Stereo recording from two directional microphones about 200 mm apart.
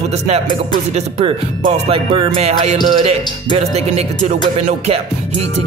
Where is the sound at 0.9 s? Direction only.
25° right (ahead or behind).